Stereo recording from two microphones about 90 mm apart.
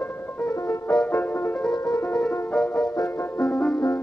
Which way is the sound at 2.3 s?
20° left (ahead or behind).